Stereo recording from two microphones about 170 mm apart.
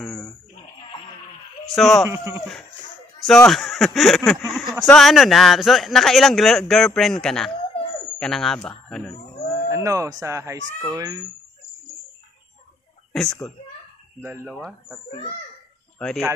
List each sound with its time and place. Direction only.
0.0 s a sound: 10° left (ahead or behind)
1.7 s a man's voice: centre (ahead or behind)
2.0 s speech: 15° right (ahead or behind)
3.3 s a man's voice: centre (ahead or behind)
9.8 s speech: 20° right (ahead or behind)
13.1 s a man's voice: centre (ahead or behind)
14.2 s speech: 15° right (ahead or behind)
14.5 s a man's voice: centre (ahead or behind)
16.0 s a man's voice: 5° left (ahead or behind)